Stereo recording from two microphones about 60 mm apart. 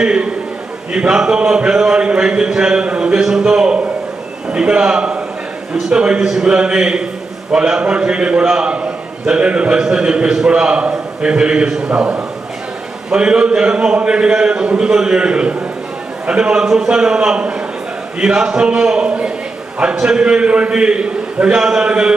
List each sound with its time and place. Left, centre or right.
0.0 s a man's voice: centre